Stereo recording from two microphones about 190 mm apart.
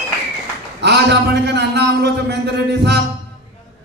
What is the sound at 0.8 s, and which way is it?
A man's voice, 60° right (ahead or behind).